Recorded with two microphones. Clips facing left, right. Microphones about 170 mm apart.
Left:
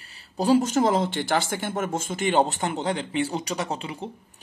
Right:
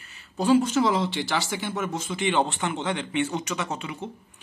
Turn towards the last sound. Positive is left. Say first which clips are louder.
# left 1 dB
turn(degrees=35)  # may be behind; listen again after turning